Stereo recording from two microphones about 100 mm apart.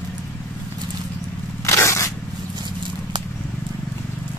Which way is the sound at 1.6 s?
25° left (ahead or behind).